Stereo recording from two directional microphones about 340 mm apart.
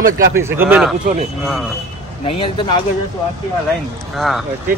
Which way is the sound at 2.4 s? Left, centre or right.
Centre.